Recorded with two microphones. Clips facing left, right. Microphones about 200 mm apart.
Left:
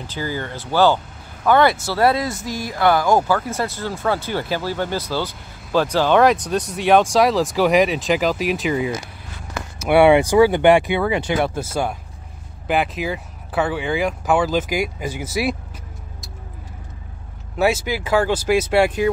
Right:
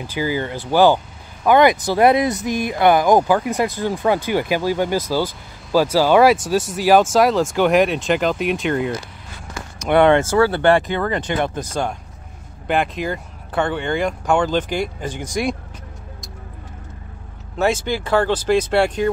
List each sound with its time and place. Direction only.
0.0 s speech: 10° right (ahead or behind); by 15.5 s 5° left (ahead or behind)
17.6 s speech: 10° left (ahead or behind)